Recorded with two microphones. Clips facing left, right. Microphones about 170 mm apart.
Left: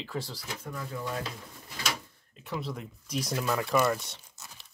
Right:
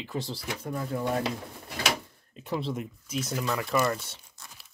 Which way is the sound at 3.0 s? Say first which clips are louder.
Left 1 dB; centre (ahead or behind).